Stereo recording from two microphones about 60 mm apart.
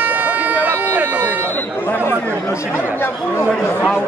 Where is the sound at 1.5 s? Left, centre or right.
Left.